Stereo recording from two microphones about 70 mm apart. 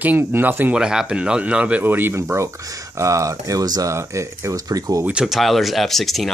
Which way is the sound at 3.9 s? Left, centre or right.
Right.